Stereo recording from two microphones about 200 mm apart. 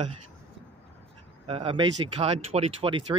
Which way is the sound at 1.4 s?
30° right (ahead or behind).